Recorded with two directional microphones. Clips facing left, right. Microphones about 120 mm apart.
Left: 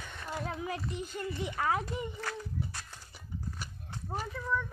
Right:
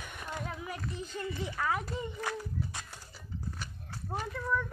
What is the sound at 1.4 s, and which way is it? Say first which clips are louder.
Speech: left 2 dB; 25° left (ahead or behind).